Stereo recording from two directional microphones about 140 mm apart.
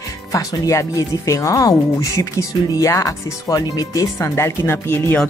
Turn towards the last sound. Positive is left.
turn(degrees=15)  # may be behind; listen again after turning